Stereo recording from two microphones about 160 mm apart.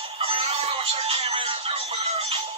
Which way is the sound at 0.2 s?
35° right (ahead or behind).